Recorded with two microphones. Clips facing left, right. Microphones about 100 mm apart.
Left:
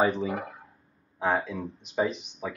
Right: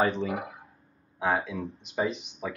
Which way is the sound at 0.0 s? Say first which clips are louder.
Left 1 dB; 5° left (ahead or behind).